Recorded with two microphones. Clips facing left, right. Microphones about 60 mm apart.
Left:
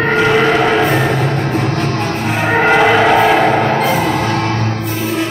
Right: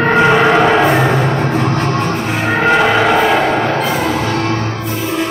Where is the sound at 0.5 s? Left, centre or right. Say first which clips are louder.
Right 2 dB; right.